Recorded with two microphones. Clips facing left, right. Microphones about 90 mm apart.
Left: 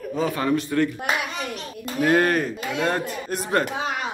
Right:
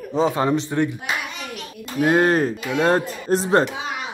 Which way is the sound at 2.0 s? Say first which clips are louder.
Right 2 dB; 20° right (ahead or behind).